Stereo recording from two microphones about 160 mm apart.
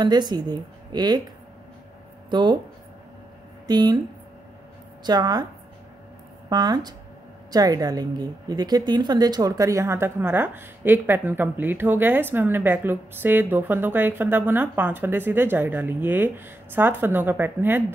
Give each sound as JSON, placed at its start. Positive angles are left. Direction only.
{"t": 0.0, "sound": "speech", "side_deg": -30}
{"t": 3.6, "sound": "speech", "side_deg": -25}
{"t": 5.0, "sound": "speech", "side_deg": -25}
{"t": 6.5, "sound": "a woman's voice", "side_deg": -25}